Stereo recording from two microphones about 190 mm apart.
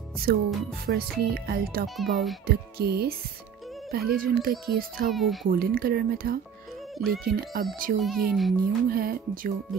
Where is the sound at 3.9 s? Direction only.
55° right (ahead or behind).